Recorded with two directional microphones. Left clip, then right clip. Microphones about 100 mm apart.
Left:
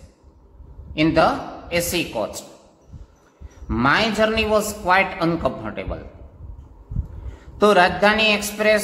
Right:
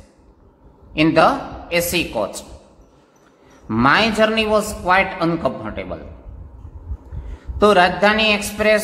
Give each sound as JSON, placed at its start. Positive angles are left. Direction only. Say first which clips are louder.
{"t": 0.9, "sound": "a man's voice", "louder": "right 3 dB", "side_deg": -20}
{"t": 3.6, "sound": "a man's voice", "louder": "right 3 dB", "side_deg": -20}
{"t": 7.2, "sound": "a man's voice", "louder": "right 2 dB", "side_deg": 0}